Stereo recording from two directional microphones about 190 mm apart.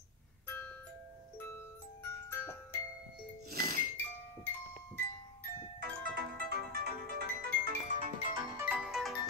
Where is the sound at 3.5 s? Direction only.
50° right (ahead or behind).